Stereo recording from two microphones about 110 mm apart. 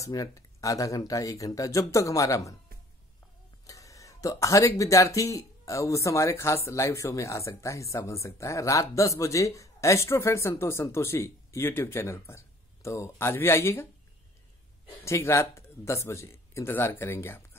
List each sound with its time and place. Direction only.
0.0 s speech: 30° left (ahead or behind)
3.6 s speech: 30° left (ahead or behind)
15.0 s speech: 25° left (ahead or behind)